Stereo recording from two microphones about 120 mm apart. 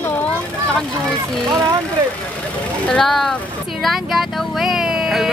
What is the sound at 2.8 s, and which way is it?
Speech, 5° left (ahead or behind).